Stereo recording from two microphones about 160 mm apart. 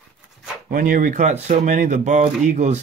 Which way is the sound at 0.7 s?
55° right (ahead or behind).